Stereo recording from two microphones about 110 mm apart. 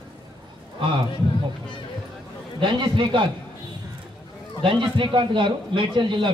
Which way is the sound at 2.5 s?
45° right (ahead or behind).